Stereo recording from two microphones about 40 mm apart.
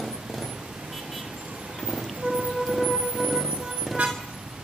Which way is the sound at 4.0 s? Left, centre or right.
Right.